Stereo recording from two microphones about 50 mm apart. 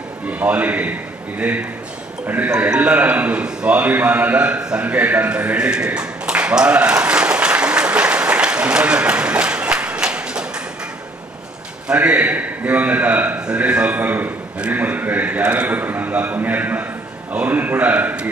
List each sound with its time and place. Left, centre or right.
0.3 s a man's voice: right
4.8 s a man's voice: right
5.7 s applause: right
11.9 s a man's voice: right
15.8 s a man's voice: right